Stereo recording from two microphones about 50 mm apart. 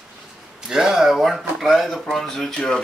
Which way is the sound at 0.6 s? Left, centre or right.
Centre.